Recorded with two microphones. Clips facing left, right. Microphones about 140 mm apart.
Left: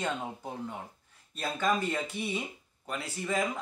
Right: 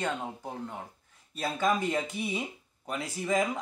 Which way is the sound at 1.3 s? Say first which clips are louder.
Right 2 dB; 10° right (ahead or behind).